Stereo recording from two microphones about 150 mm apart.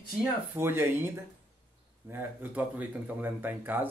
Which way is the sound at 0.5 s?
15° right (ahead or behind).